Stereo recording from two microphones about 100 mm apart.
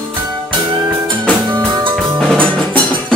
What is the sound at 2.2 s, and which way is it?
Music, 5° left (ahead or behind).